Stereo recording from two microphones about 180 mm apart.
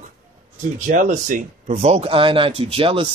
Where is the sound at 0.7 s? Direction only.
45° right (ahead or behind).